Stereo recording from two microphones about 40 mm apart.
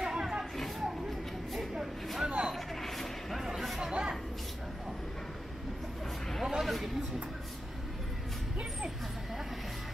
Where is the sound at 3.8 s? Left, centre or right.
Centre.